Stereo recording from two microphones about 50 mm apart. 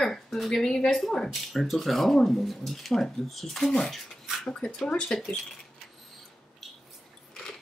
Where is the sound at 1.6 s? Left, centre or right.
Centre.